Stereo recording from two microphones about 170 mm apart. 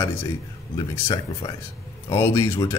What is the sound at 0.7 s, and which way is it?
Speech, 30° left (ahead or behind).